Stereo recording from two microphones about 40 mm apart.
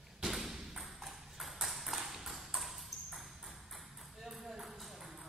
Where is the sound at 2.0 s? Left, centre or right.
Centre.